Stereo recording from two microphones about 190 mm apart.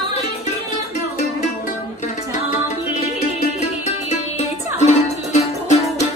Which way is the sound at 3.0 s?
35° left (ahead or behind).